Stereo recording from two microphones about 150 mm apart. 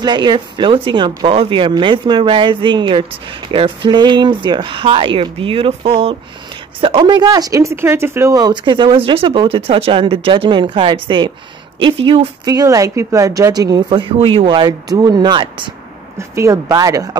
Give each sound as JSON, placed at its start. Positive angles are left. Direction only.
{"t": 0.0, "sound": "speech", "side_deg": -30}
{"t": 12.4, "sound": "a woman's voice", "side_deg": -25}
{"t": 16.2, "sound": "a woman's voice", "side_deg": -20}